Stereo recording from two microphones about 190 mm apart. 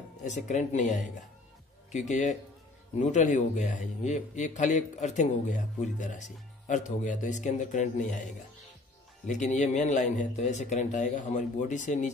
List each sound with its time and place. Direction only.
0.2 s a man's voice: 40° left (ahead or behind)